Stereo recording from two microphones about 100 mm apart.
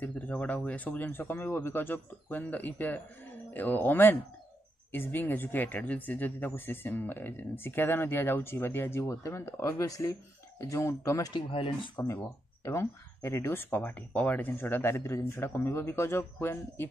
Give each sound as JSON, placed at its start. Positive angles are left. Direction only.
{"t": 0.0, "sound": "speech", "side_deg": 15}
{"t": 11.3, "sound": "speech", "side_deg": 55}
{"t": 12.0, "sound": "speech", "side_deg": 30}